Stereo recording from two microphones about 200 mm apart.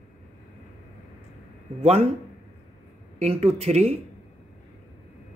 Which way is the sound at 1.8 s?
30° right (ahead or behind).